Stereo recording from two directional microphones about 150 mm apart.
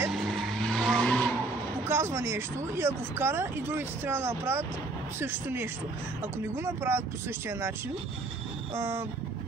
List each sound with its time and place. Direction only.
0.1 s vehicle: centre (ahead or behind)
1.9 s speech: 15° right (ahead or behind)
8.7 s speech: 15° right (ahead or behind)